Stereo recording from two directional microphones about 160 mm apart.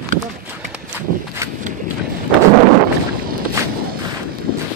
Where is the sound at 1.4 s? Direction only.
15° right (ahead or behind).